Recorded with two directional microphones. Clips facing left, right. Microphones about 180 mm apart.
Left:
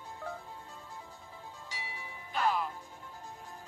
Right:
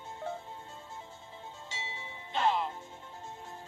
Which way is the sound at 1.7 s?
25° right (ahead or behind).